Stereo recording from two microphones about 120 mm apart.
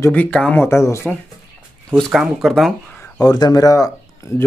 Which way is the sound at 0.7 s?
25° left (ahead or behind).